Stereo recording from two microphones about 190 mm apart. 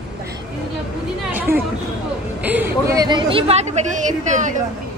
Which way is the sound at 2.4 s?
10° right (ahead or behind).